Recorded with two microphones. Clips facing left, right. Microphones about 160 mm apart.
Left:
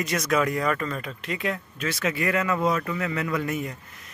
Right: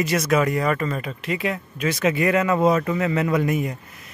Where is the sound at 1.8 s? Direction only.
20° right (ahead or behind).